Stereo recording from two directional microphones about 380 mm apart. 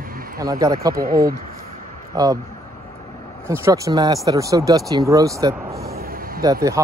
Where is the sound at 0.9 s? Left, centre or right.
Right.